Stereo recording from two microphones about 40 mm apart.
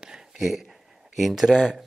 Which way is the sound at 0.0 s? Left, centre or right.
Centre.